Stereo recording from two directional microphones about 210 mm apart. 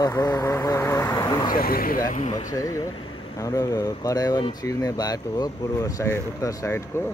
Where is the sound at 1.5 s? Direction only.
45° left (ahead or behind).